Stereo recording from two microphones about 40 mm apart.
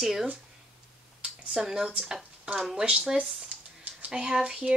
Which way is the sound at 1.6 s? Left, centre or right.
Centre.